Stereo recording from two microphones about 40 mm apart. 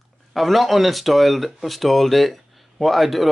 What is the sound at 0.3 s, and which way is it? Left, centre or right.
Speech, centre.